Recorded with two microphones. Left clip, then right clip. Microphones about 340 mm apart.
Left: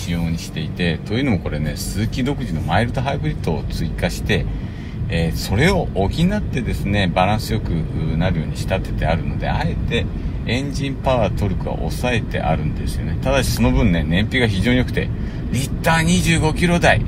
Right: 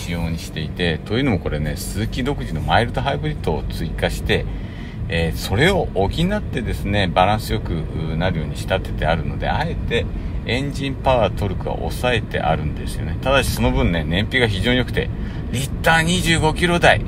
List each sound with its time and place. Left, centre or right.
0.1 s speech: right
5.1 s speech: right
11.1 s speech: right